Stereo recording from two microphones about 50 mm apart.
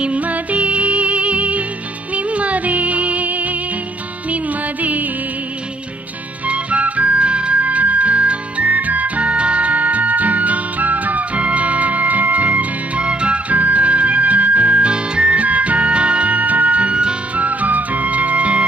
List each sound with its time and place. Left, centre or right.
0.0 s music: right
6.4 s music: right
17.5 s music: right